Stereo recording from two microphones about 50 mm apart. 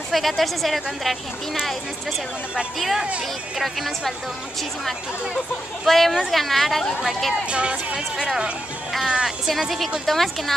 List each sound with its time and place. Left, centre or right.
0.1 s a woman's voice: centre
2.8 s a woman's voice: centre
5.9 s a woman's voice: centre
7.4 s speech: right
9.0 s speech: centre
9.5 s a woman's voice: centre